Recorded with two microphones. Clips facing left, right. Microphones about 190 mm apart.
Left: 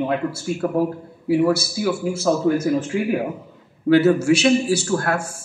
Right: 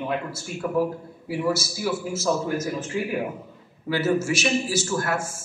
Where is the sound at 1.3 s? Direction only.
60° left (ahead or behind).